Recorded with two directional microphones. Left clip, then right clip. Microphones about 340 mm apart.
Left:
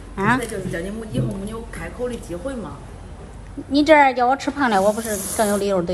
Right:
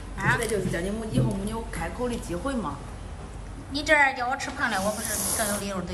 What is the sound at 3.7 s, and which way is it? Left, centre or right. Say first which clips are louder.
Speech: left 8 dB; centre.